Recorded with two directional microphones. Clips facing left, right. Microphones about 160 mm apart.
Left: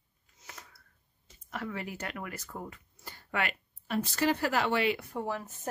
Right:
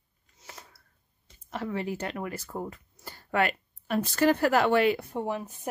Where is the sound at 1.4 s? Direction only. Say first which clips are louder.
Right 6 dB; 30° right (ahead or behind); by 5.0 s 50° right (ahead or behind).